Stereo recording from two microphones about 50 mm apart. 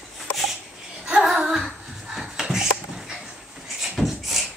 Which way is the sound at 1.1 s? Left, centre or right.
Centre.